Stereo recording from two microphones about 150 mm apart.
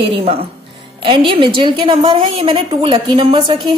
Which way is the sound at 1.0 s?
35° right (ahead or behind).